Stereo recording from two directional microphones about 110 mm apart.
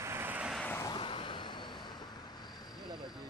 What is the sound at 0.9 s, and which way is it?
Vehicle, 50° left (ahead or behind).